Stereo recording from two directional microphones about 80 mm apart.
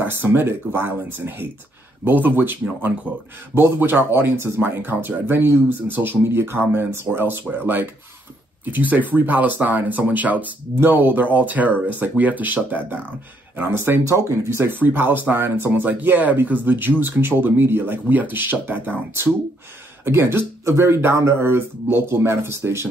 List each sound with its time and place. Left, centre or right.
0.0 s speech: right